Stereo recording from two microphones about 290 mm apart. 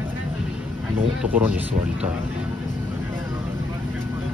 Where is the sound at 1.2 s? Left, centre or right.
Centre.